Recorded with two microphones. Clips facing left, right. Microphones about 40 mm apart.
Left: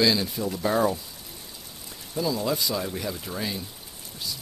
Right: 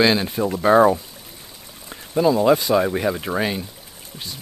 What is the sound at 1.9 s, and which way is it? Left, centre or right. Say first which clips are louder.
Speech: right 10 dB; right.